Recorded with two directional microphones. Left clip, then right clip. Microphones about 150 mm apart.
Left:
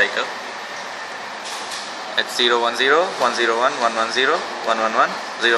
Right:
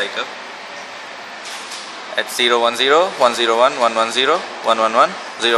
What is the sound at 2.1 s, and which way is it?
Speech, 40° right (ahead or behind).